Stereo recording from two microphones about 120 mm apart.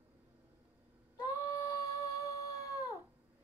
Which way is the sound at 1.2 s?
30° left (ahead or behind).